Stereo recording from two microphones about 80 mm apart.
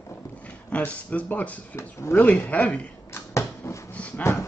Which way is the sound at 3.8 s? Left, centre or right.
Centre.